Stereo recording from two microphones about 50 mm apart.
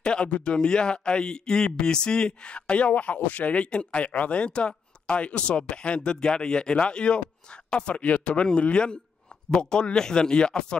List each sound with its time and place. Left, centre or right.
0.0 s speech: centre